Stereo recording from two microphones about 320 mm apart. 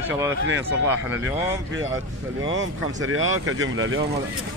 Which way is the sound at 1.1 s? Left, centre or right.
Right.